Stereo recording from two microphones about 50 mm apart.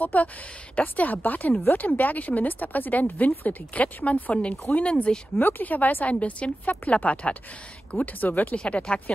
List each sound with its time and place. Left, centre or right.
0.0 s speech: left
5.4 s speech: left
8.5 s speech: left